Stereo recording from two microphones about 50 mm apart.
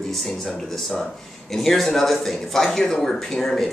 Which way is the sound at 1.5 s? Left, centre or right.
Centre.